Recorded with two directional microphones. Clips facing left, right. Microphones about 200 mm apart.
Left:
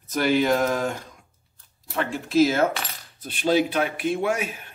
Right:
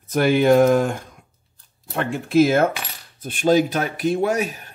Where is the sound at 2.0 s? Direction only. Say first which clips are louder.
Right 3 dB; 55° right (ahead or behind).